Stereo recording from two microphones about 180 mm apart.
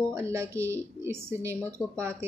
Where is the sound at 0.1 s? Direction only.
15° right (ahead or behind).